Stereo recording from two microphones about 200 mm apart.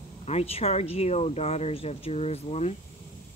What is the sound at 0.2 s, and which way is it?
Speech, 30° left (ahead or behind).